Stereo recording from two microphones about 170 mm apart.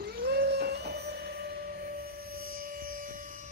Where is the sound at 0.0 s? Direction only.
65° right (ahead or behind).